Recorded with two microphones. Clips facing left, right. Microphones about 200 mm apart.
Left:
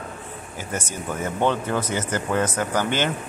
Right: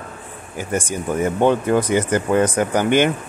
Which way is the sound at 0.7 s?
15° right (ahead or behind).